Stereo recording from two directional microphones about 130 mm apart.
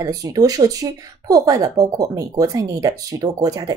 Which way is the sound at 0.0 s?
30° right (ahead or behind).